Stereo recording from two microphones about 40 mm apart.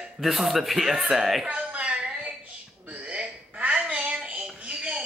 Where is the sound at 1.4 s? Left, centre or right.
Right.